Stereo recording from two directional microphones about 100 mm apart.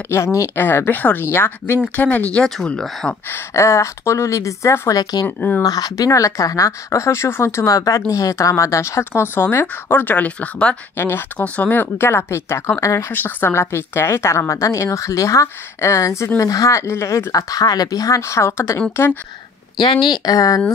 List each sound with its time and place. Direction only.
0.1 s speech: 30° left (ahead or behind); by 3.2 s 5° left (ahead or behind)
3.3 s speech: 25° left (ahead or behind)
5.2 s speech: 20° left (ahead or behind)
5.6 s speech: 40° left (ahead or behind); by 19.1 s 25° left (ahead or behind)
19.8 s speech: 50° left (ahead or behind); by 20.6 s 35° left (ahead or behind)